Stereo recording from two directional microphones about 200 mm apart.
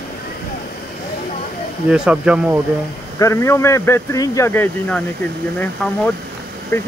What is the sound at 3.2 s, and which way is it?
Speech, 15° left (ahead or behind).